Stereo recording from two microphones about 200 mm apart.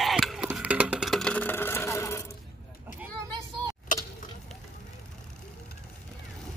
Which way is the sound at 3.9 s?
40° left (ahead or behind).